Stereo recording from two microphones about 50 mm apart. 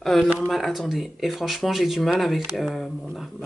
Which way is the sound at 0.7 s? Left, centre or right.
Centre.